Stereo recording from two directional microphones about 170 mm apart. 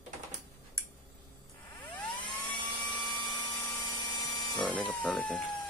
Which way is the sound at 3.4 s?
10° left (ahead or behind).